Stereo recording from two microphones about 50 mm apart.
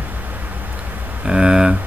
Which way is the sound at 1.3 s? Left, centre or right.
Centre.